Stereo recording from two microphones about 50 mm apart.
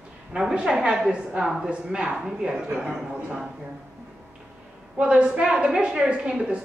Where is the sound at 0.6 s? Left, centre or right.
Centre.